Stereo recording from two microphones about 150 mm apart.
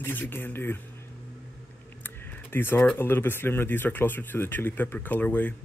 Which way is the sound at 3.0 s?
15° left (ahead or behind).